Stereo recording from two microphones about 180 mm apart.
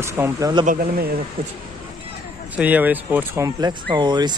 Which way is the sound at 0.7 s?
60° right (ahead or behind).